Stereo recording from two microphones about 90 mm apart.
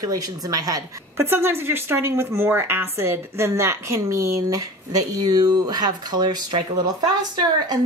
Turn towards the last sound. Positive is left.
turn(degrees=-50)  # may be behind; listen again after turning